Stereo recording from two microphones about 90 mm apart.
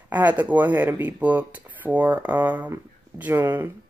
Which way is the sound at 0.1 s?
20° right (ahead or behind).